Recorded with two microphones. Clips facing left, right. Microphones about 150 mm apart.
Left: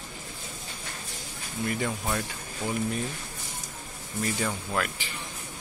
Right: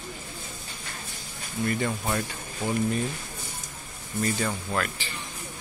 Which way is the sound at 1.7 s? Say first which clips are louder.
Right 2 dB; centre (ahead or behind).